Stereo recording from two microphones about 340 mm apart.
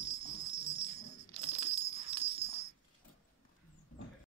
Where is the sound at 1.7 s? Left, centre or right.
Centre.